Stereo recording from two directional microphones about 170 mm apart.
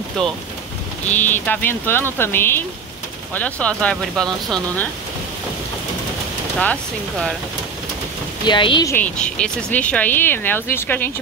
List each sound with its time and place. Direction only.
0.2 s speech: 5° left (ahead or behind)
6.6 s speech: 5° left (ahead or behind)
8.5 s speech: 25° left (ahead or behind)
8.9 s speech: 5° left (ahead or behind)